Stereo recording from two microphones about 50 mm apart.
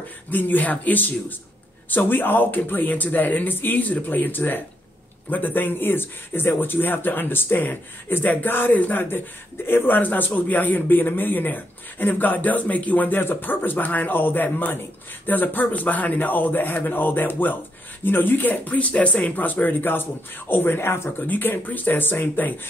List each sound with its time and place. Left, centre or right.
0.3 s a man's voice: left
21.3 s a man's voice: left